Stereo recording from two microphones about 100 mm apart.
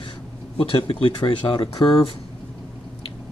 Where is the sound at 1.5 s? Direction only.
40° left (ahead or behind).